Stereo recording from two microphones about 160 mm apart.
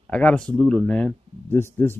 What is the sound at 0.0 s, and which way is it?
Speech, 10° left (ahead or behind).